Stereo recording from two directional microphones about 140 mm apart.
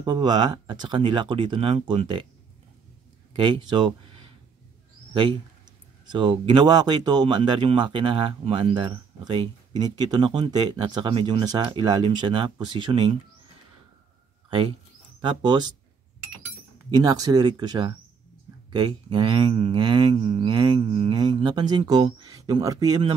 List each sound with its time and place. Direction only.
0.0 s speech: 30° right (ahead or behind)
3.3 s speech: 35° right (ahead or behind)
15.2 s speech: 35° right (ahead or behind)
16.9 s speech: 25° right (ahead or behind)